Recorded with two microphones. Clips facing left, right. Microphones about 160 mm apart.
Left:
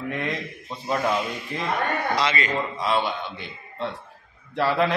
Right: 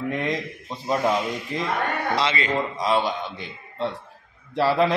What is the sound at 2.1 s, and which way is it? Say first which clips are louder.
Speech: right 3 dB; 25° right (ahead or behind).